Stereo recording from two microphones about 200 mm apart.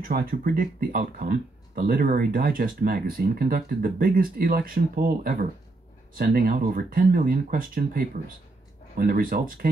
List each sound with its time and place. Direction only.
0.0 s speech: 45° right (ahead or behind)